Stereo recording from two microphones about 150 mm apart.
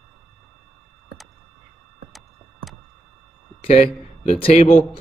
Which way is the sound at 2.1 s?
Centre (ahead or behind).